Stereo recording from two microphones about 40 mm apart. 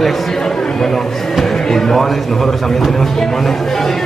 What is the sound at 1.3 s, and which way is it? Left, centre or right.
Speech, centre.